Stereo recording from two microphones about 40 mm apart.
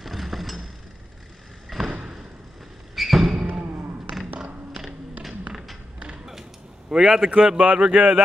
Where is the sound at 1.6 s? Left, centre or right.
Centre.